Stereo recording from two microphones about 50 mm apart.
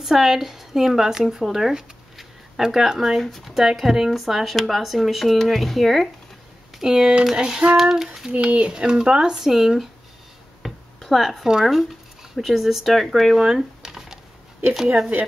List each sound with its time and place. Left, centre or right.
0.0 s speech: centre
3.2 s speech: centre
6.8 s speech: centre
8.3 s speech: right; by 9.8 s centre
10.6 s a sound: centre
11.6 s speech: centre
13.5 s a sound: centre